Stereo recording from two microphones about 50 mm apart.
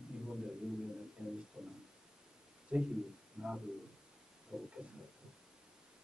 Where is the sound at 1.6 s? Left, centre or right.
Centre.